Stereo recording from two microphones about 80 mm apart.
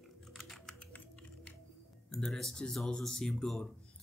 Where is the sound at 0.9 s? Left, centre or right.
Centre.